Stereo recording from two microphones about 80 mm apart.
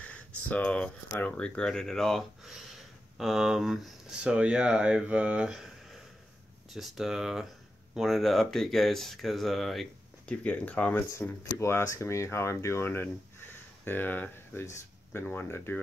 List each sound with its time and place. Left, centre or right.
0.0 s speech: centre
4.2 s speech: centre
10.2 s speech: centre
11.0 s speech: left